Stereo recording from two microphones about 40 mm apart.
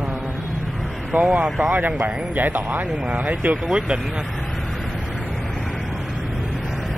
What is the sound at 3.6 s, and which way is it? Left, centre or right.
Speech, right.